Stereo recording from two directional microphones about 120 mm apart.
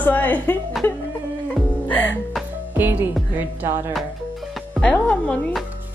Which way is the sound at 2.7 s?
15° right (ahead or behind).